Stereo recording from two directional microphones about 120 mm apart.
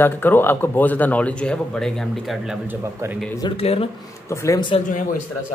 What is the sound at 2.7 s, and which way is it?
Speech, 20° right (ahead or behind).